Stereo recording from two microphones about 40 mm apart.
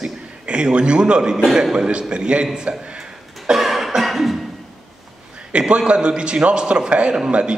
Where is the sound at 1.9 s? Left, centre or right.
Right.